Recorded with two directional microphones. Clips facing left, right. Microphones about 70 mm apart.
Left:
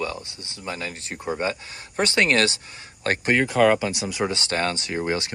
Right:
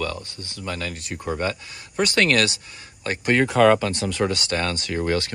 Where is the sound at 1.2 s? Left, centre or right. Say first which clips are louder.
Even; centre.